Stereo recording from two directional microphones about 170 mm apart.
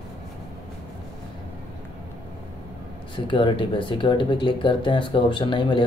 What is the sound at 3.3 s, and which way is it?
Speech, 30° left (ahead or behind).